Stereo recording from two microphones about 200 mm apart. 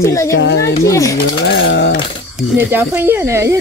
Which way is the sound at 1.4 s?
60° left (ahead or behind).